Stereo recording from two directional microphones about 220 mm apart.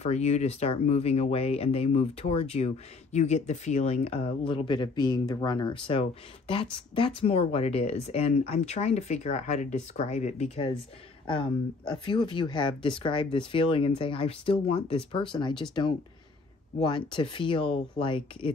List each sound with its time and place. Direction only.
0.0 s speech: 30° left (ahead or behind)
16.8 s speech: 20° left (ahead or behind)